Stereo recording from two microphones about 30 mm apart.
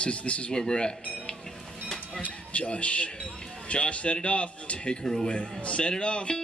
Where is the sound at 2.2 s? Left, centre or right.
Left.